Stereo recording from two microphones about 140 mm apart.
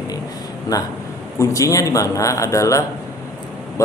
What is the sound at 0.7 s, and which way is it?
A man's voice, 25° left (ahead or behind).